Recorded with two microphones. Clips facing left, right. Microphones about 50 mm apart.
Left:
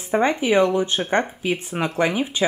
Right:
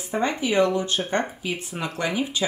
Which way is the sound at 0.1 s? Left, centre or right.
Left.